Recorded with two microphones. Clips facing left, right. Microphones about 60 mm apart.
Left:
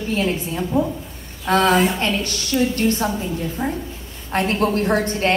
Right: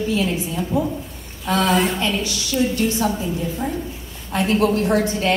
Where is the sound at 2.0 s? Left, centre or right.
Left.